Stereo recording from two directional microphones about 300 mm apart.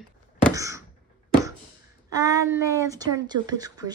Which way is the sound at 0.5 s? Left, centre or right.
Centre.